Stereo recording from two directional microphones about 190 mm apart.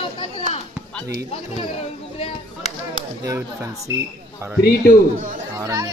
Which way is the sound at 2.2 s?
30° left (ahead or behind).